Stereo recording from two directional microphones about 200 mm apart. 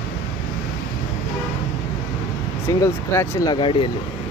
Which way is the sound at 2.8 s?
15° left (ahead or behind).